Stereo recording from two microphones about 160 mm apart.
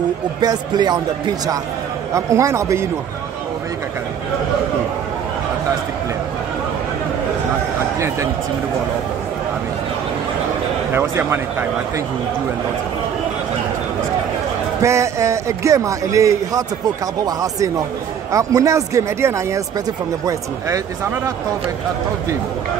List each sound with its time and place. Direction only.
0.4 s a man's voice: 25° right (ahead or behind)
2.1 s a man's voice: 20° right (ahead or behind)
10.9 s a man's voice: 15° right (ahead or behind)
14.8 s a man's voice: 20° right (ahead or behind)